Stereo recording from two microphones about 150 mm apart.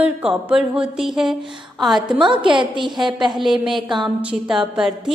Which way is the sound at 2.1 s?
35° right (ahead or behind).